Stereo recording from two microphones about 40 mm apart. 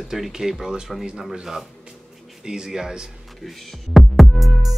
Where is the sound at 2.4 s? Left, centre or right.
Centre.